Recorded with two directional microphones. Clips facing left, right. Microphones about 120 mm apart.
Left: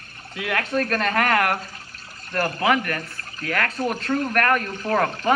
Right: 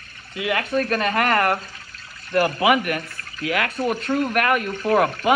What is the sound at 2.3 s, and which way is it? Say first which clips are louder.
Speech: right 3 dB; 15° right (ahead or behind).